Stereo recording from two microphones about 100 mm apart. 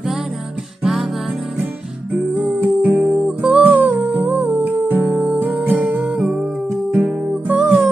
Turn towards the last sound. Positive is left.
turn(degrees=-10)  # may be behind; listen again after turning